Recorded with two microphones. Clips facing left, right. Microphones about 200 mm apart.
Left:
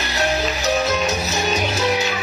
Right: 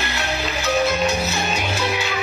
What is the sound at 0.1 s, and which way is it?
Music, 40° left (ahead or behind).